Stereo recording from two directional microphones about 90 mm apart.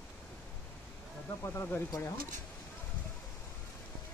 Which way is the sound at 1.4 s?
30° left (ahead or behind).